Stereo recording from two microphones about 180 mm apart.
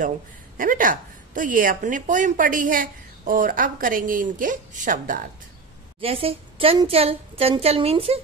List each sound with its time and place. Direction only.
0.6 s speech: 50° right (ahead or behind)
5.9 s a woman's voice: 30° right (ahead or behind)